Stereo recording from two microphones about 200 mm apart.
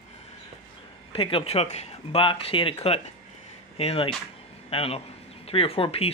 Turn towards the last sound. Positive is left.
turn(degrees=30)  # may be behind; listen again after turning